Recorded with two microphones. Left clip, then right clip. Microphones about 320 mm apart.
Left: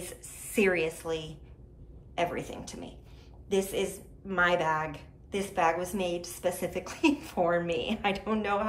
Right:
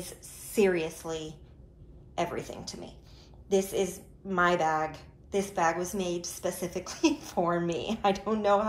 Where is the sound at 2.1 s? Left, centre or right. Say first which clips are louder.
Left 1 dB; centre.